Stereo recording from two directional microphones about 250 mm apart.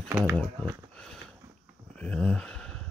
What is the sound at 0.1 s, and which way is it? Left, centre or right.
Speech, centre.